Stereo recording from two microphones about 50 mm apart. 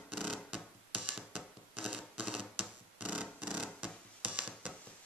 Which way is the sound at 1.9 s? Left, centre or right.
Right.